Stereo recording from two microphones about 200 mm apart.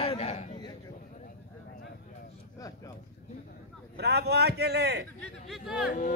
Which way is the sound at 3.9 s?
55° right (ahead or behind).